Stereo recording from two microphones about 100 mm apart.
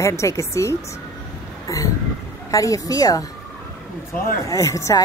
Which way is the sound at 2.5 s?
35° left (ahead or behind).